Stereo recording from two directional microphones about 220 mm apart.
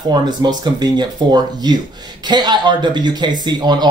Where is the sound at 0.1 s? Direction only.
20° right (ahead or behind).